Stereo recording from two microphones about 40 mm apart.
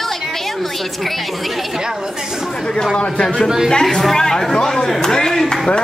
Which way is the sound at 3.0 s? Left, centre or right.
Left.